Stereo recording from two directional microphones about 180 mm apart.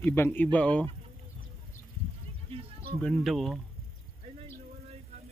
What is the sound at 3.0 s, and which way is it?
Speech, centre (ahead or behind).